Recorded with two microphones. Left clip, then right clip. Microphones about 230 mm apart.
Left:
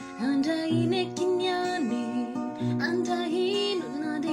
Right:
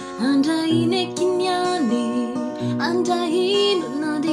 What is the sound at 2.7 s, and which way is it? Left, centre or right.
Music, centre.